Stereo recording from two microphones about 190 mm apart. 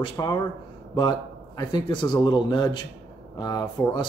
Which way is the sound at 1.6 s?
20° left (ahead or behind).